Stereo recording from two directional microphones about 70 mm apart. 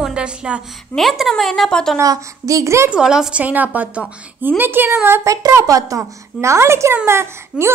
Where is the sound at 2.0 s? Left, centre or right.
Right.